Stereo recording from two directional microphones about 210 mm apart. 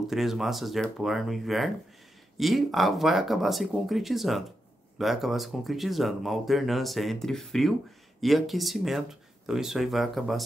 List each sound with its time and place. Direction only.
0.1 s speech: centre (ahead or behind)